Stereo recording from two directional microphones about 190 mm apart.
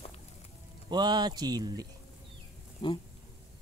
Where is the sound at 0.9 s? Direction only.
20° right (ahead or behind).